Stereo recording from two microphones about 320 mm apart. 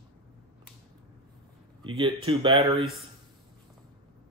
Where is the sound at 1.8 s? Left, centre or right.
Centre.